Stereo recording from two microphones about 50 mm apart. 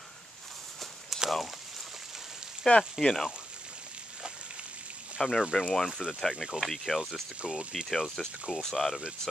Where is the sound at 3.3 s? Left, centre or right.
Centre.